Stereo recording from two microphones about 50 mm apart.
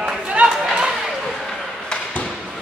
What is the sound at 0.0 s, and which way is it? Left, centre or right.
Chatter, right.